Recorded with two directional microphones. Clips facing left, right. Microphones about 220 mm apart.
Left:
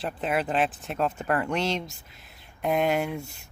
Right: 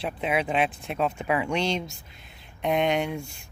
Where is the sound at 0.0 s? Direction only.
Centre (ahead or behind).